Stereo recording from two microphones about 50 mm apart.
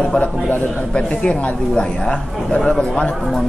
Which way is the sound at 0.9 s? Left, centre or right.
Left.